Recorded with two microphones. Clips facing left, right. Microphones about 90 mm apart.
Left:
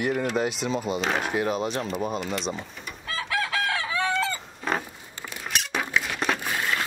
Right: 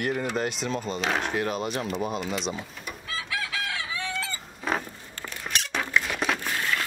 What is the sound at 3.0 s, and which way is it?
Chicken, 50° left (ahead or behind).